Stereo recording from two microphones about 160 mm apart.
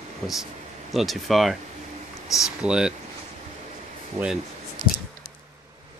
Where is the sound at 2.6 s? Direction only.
5° right (ahead or behind).